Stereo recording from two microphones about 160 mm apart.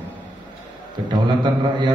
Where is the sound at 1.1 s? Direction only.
30° right (ahead or behind).